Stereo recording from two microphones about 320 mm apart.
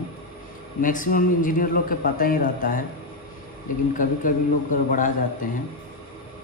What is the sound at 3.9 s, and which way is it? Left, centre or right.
A man's voice, left.